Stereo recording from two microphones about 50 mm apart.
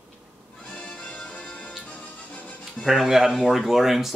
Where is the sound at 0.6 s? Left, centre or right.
Centre.